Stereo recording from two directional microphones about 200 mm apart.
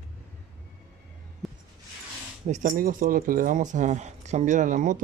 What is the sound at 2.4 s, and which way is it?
Speech, 35° right (ahead or behind).